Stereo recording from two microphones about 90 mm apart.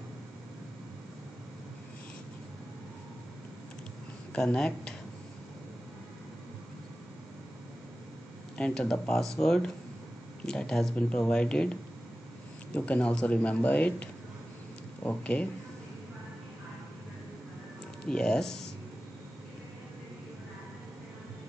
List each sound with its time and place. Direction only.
4.4 s speech: 10° left (ahead or behind)
8.5 s speech: 10° left (ahead or behind)
15.0 s speech: 15° left (ahead or behind)
18.0 s speech: 10° left (ahead or behind)